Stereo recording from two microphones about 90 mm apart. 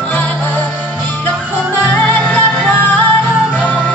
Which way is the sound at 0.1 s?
15° left (ahead or behind).